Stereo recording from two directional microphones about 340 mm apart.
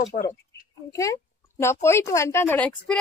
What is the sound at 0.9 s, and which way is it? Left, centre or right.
A woman's voice, centre.